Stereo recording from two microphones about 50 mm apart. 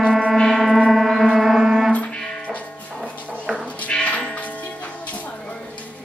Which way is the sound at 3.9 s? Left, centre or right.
Left.